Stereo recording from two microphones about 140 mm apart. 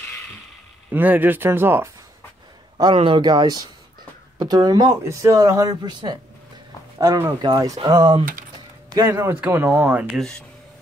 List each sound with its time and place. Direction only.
0.9 s speech: 10° right (ahead or behind)
2.8 s speech: 35° right (ahead or behind)
8.9 s speech: 25° right (ahead or behind)